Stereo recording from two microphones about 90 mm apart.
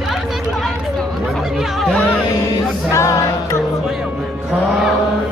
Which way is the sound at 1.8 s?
10° left (ahead or behind).